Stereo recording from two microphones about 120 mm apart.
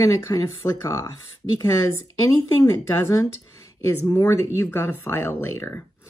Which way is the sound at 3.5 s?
25° left (ahead or behind).